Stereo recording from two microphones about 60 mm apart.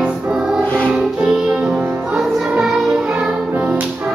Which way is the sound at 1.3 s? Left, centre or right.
Centre.